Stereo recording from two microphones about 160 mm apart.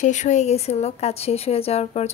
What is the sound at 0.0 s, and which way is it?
A woman's voice, 50° left (ahead or behind).